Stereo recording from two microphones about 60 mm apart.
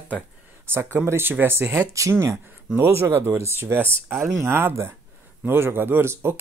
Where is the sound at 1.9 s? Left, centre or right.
Right.